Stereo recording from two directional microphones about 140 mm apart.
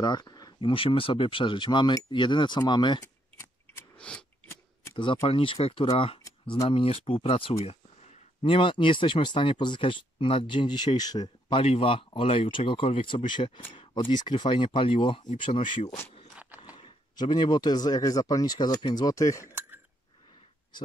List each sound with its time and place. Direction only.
0.0 s speech: 30° left (ahead or behind)
3.0 s scissors: 20° left (ahead or behind)
4.9 s speech: 35° left (ahead or behind)
11.6 s speech: 45° left (ahead or behind)
15.7 s speech: 55° left (ahead or behind)
16.3 s horse: 10° right (ahead or behind)
16.7 s speech: 35° left (ahead or behind)